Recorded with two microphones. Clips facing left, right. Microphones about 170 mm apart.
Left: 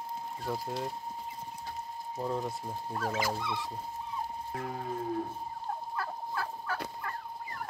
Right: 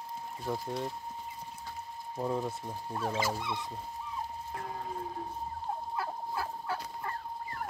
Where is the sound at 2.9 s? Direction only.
20° right (ahead or behind).